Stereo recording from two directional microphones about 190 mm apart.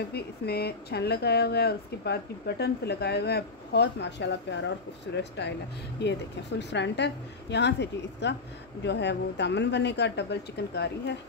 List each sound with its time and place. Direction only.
0.1 s speech: 55° left (ahead or behind)